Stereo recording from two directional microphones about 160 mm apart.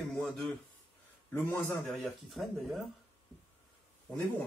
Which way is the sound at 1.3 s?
15° left (ahead or behind).